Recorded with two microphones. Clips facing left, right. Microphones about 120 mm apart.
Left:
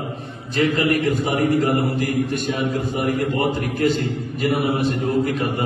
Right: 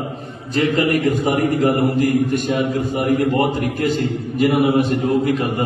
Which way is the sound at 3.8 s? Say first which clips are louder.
Right 1 dB; 45° right (ahead or behind).